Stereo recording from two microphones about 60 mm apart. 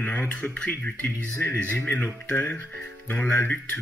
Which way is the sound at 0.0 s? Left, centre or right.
Left.